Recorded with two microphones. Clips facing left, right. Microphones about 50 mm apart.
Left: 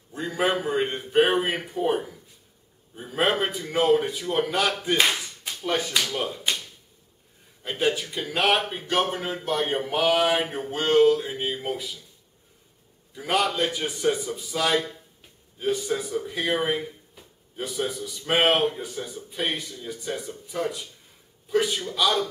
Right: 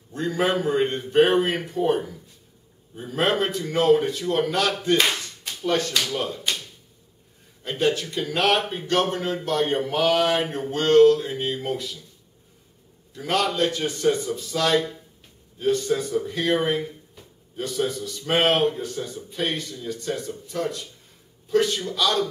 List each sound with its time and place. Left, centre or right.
0.1 s speech: centre
13.1 s speech: centre